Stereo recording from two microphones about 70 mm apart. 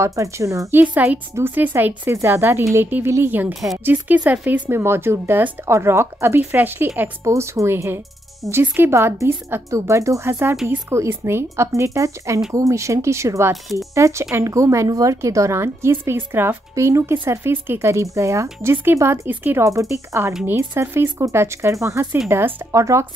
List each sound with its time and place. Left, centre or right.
0.0 s speech: right
0.9 s a woman's voice: right
4.7 s a woman's voice: right
7.2 s a woman's voice: right
19.2 s speech: right
19.6 s speech: right
20.4 s a woman's voice: right
22.7 s speech: right